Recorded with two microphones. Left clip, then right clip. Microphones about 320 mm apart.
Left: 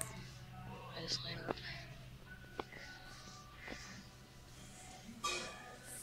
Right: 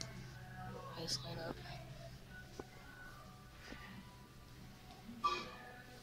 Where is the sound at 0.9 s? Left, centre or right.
Centre.